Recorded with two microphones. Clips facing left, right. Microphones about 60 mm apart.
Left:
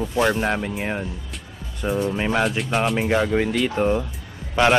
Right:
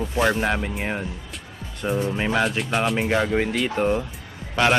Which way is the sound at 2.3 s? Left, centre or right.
Centre.